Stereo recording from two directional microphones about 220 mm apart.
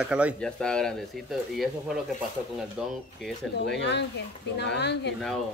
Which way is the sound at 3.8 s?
50° left (ahead or behind).